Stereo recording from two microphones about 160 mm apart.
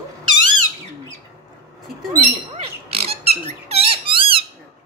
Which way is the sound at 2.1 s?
40° right (ahead or behind).